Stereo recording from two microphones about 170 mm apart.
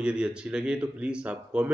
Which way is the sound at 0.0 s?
5° right (ahead or behind).